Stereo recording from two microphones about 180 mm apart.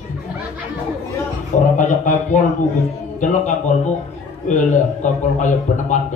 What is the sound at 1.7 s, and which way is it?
Speech, 45° left (ahead or behind).